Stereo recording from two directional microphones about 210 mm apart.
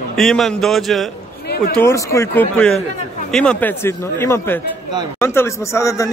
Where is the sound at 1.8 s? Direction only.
15° left (ahead or behind).